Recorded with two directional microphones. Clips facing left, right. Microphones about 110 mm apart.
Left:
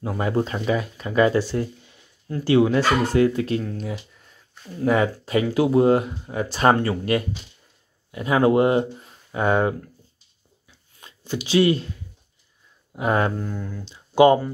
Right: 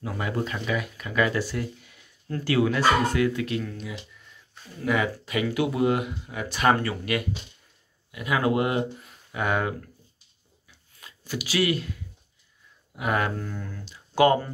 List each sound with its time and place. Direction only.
0.0 s speech: 30° left (ahead or behind)
11.0 s speech: 25° left (ahead or behind)
12.9 s speech: 30° left (ahead or behind)
13.4 s speech: 15° left (ahead or behind)